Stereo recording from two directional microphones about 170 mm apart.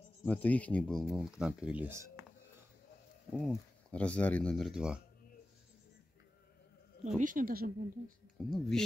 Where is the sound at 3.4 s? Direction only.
5° left (ahead or behind).